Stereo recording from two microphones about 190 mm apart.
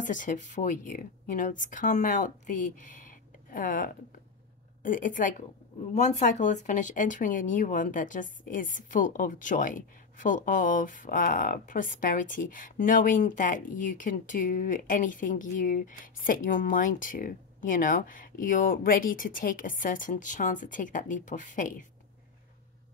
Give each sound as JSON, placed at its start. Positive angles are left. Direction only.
{"t": 0.0, "sound": "speech", "side_deg": 40}